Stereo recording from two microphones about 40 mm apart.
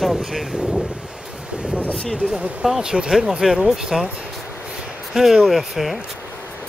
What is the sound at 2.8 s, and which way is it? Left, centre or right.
Speech, right.